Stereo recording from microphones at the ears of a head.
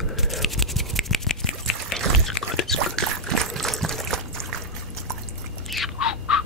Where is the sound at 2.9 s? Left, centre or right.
Right.